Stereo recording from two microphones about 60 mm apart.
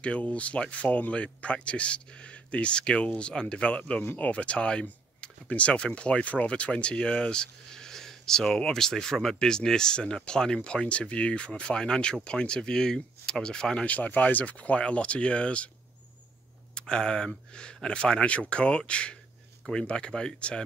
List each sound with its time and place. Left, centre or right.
0.0 s speech: left
13.8 s speech: left
16.7 s speech: centre